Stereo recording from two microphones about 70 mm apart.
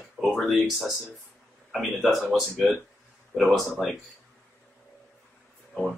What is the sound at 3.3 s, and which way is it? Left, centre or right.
Speech, centre.